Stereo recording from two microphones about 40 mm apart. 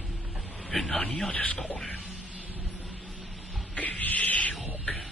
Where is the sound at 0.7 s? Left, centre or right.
Centre.